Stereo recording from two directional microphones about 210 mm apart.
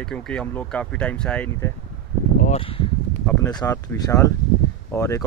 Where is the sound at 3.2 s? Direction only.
15° left (ahead or behind).